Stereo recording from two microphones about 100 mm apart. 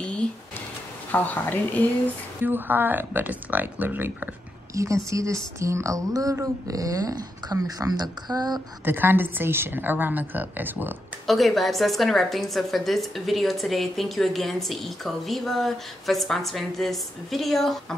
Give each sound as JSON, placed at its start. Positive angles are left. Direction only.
{"t": 0.0, "sound": "a sound", "side_deg": 10}
{"t": 1.1, "sound": "a woman's voice", "side_deg": 15}
{"t": 2.4, "sound": "speech", "side_deg": -20}
{"t": 4.7, "sound": "a woman's voice", "side_deg": -30}
{"t": 8.8, "sound": "speech", "side_deg": -20}
{"t": 11.2, "sound": "a woman's voice", "side_deg": 0}